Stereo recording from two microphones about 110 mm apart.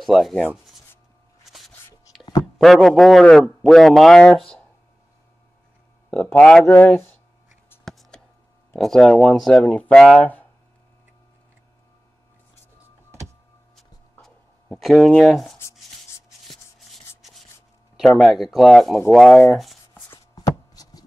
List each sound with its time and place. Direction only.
0.0 s speech: centre (ahead or behind)
1.4 s a sound: centre (ahead or behind)
2.4 s speech: centre (ahead or behind)
6.0 s speech: 10° left (ahead or behind)
7.8 s a sound: 5° left (ahead or behind)
8.7 s speech: 5° left (ahead or behind)
14.2 s writing: centre (ahead or behind)
16.4 s rub: centre (ahead or behind)
17.9 s speech: centre (ahead or behind)
19.9 s a sound: 30° left (ahead or behind)